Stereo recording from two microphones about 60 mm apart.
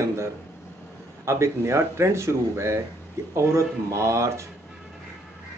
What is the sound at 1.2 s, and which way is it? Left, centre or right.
Speech, right.